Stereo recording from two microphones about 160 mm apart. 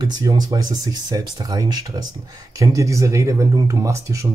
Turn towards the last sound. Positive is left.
turn(degrees=-20)  # may be behind; listen again after turning